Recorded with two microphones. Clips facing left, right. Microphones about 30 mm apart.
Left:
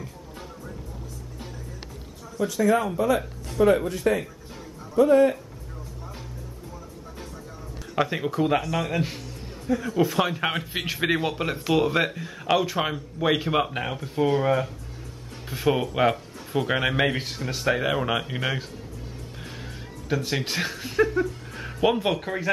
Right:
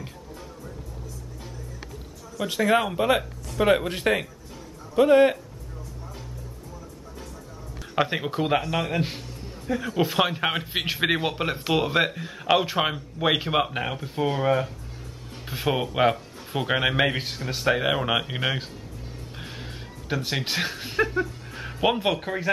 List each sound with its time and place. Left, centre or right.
2.4 s speech: right
7.9 s a man's voice: centre
10.4 s speech: centre
19.4 s music: centre
20.2 s speech: centre